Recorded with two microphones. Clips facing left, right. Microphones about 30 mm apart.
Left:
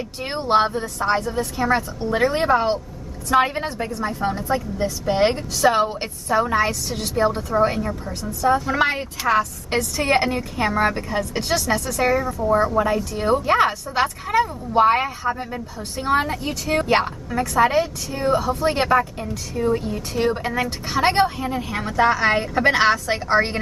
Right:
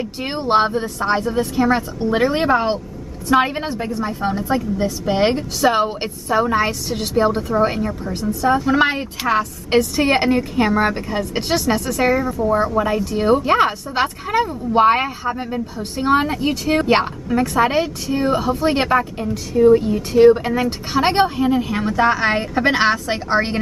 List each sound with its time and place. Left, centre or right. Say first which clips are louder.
0.2 s a woman's voice: right 2 dB; centre